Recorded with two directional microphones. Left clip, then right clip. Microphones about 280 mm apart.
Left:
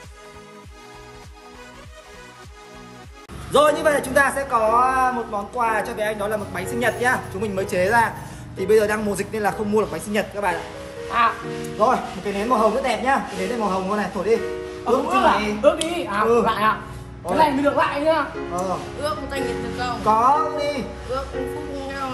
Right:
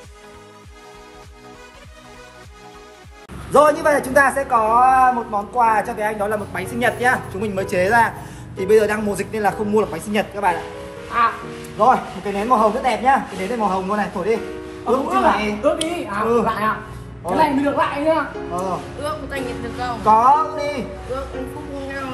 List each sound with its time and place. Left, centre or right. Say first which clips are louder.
3.5 s a man's voice: right 3 dB; centre
11.8 s speech: right 4 dB; centre